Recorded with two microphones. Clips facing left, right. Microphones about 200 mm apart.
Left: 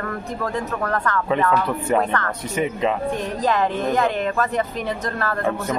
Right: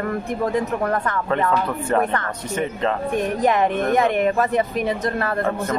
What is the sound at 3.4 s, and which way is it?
Speech, 20° right (ahead or behind).